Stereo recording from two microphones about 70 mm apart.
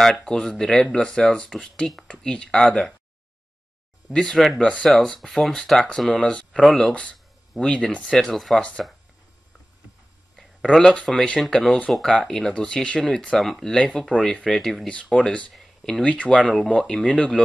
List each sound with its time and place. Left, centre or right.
0.1 s speech: centre
4.1 s speech: centre
4.6 s speech: centre
4.8 s speech: centre
6.9 s speech: centre
8.5 s speech: centre
10.3 s a sound: centre
11.1 s speech: centre
15.1 s speech: centre
15.5 s a sound: centre
16.0 s speech: centre